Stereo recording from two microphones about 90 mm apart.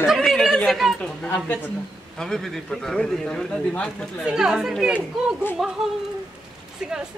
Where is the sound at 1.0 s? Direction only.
20° left (ahead or behind).